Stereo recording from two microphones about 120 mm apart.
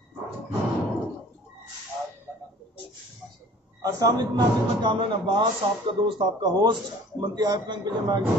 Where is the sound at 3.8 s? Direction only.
30° right (ahead or behind).